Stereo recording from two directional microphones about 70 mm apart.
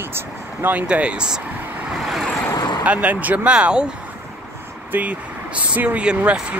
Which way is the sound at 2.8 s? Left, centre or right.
Centre.